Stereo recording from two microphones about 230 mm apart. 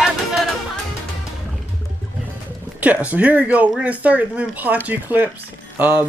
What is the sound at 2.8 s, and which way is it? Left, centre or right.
Speech, centre.